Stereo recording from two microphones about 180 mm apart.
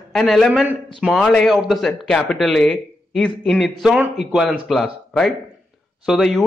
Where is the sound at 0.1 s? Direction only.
Centre (ahead or behind).